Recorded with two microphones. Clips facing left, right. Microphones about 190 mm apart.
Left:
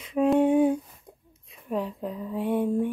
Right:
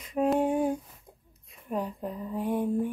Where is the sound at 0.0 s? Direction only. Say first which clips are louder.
Left 4 dB; centre (ahead or behind).